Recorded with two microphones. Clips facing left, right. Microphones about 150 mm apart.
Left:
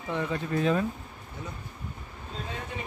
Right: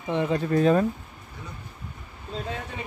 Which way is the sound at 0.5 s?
40° right (ahead or behind).